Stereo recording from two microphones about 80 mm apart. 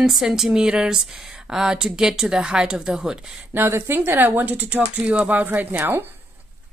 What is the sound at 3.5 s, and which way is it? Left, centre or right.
A woman's voice, right.